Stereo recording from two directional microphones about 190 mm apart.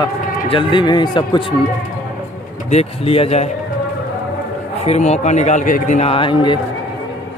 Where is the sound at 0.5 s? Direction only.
25° left (ahead or behind).